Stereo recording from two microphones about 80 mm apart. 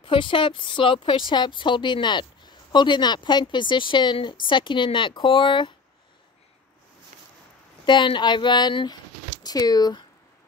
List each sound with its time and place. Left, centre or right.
0.0 s a woman's voice: left
7.8 s a woman's voice: left
9.4 s speech: left